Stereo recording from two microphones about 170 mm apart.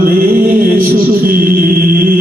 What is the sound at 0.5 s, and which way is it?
Music, 55° right (ahead or behind).